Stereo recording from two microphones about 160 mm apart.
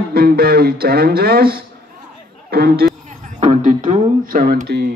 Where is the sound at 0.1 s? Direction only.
70° right (ahead or behind).